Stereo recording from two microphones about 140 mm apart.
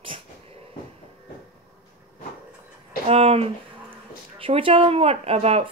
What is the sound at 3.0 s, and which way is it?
Speech, 45° right (ahead or behind).